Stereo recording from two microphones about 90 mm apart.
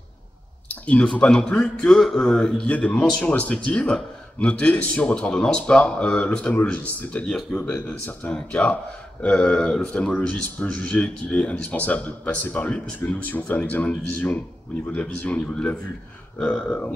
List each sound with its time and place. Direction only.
0.7 s a man's voice: 15° left (ahead or behind)